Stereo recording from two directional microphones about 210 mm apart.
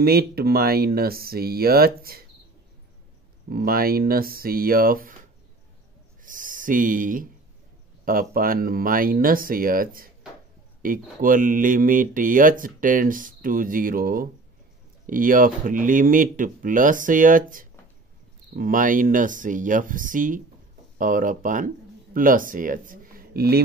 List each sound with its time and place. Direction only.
0.0 s speech: 45° right (ahead or behind)
3.4 s speech: 45° right (ahead or behind)
6.2 s speech: 40° right (ahead or behind)